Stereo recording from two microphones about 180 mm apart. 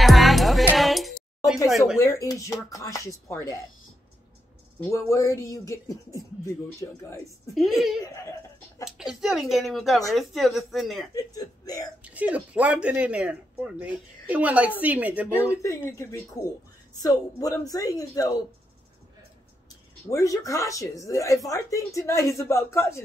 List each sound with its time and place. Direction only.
0.0 s music: centre (ahead or behind)
0.7 s a sound: centre (ahead or behind)
1.7 s speech: centre (ahead or behind)
2.0 s a man's voice: 15° left (ahead or behind)
4.7 s a man's voice: 15° left (ahead or behind)
7.5 s speech: centre (ahead or behind)
8.0 s speech: 20° left (ahead or behind)
8.8 s speech: 5° right (ahead or behind)
11.1 s speech: 20° left (ahead or behind)
12.0 s speech: 10° right (ahead or behind)
15.6 s a man's voice: 15° left (ahead or behind)
20.1 s a man's voice: 20° left (ahead or behind)